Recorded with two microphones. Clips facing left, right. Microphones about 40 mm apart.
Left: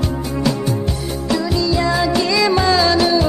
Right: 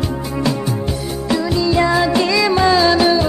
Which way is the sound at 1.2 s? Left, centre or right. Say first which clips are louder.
Right 1 dB; centre.